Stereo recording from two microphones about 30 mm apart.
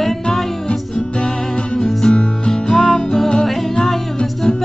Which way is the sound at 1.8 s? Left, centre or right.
Centre.